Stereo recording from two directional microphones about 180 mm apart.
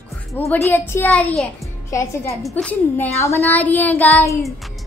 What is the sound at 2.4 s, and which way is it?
A child's voice, centre (ahead or behind).